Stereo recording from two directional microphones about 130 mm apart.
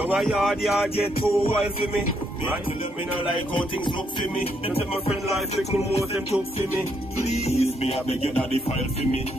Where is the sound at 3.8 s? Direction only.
40° left (ahead or behind).